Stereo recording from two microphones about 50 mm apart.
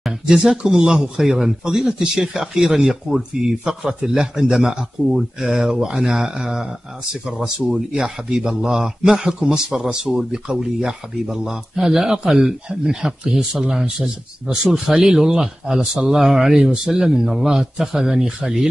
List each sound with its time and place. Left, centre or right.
0.3 s a man's voice: centre